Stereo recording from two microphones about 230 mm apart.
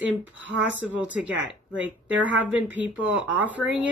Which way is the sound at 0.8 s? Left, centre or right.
Centre.